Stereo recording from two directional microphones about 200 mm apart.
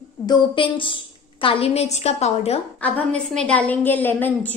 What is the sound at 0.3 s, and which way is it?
A woman's voice, 25° left (ahead or behind).